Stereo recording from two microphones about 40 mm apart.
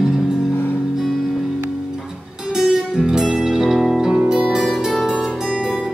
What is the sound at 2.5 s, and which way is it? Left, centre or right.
Music, centre.